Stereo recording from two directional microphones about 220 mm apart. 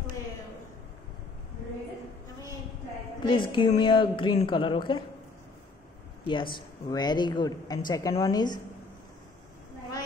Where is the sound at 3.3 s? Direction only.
20° left (ahead or behind).